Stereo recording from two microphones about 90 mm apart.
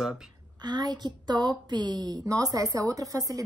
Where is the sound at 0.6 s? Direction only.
50° right (ahead or behind).